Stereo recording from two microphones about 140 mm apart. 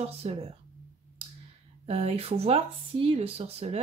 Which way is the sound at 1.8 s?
45° right (ahead or behind).